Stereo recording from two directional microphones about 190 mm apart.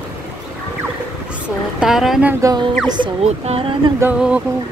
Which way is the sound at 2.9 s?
30° right (ahead or behind).